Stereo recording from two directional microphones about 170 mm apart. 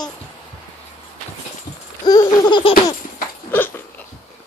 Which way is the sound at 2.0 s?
25° left (ahead or behind).